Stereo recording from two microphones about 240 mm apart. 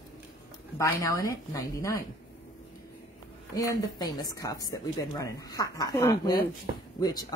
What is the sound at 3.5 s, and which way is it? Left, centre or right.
A woman's voice, centre.